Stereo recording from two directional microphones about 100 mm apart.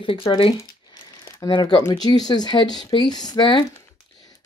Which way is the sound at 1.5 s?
50° left (ahead or behind).